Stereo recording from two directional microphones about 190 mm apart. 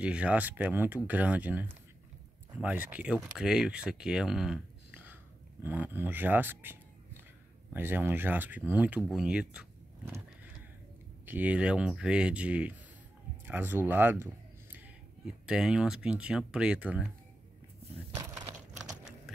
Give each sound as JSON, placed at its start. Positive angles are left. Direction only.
{"t": 0.0, "sound": "speech", "side_deg": -5}
{"t": 11.2, "sound": "speech", "side_deg": -10}
{"t": 18.1, "sound": "a sound", "side_deg": -15}